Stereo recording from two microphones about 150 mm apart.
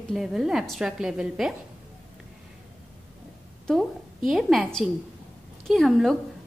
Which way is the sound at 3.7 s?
Centre (ahead or behind).